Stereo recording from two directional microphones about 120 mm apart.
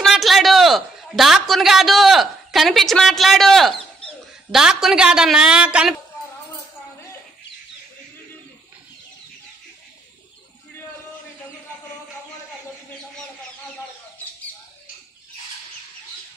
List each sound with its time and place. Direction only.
0.0 s a man's voice: centre (ahead or behind)